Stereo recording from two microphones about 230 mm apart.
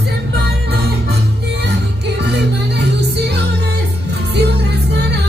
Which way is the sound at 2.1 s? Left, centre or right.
Right.